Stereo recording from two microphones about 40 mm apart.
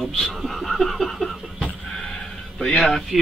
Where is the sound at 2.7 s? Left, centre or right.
Centre.